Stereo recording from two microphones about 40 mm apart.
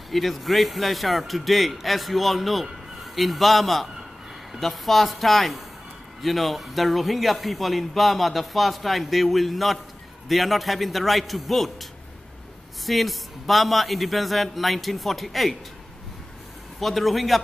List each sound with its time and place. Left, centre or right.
0.1 s speech: centre
16.8 s speech: centre